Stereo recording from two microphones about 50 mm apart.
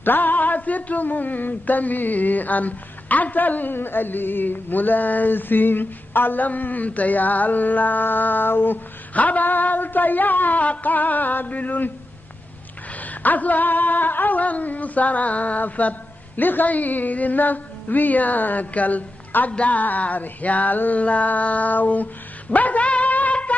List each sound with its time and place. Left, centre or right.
0.0 s speech: left
9.1 s speech: left
13.0 s speech: left
22.5 s dog: left